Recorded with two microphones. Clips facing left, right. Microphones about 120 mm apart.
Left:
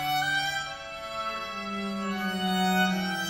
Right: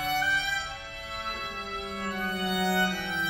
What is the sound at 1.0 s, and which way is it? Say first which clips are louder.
Music: left 2 dB; 30° left (ahead or behind).